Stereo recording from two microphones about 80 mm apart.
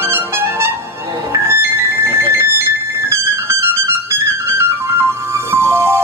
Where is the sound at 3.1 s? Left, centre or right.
Right.